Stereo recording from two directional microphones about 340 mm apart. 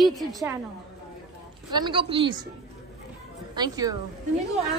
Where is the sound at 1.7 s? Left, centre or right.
Centre.